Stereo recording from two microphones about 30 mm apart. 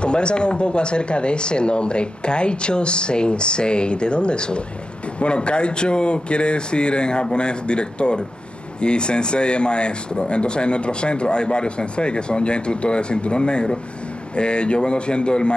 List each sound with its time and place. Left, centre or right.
0.0 s speech: left